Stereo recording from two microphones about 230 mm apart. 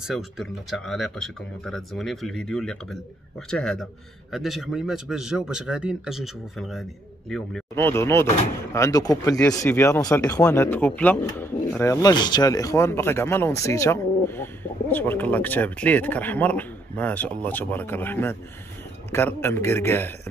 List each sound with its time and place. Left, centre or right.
0.0 s a man's voice: centre